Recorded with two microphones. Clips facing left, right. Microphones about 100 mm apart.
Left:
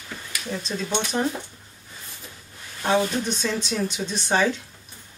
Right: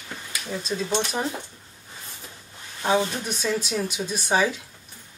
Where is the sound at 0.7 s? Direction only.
5° right (ahead or behind).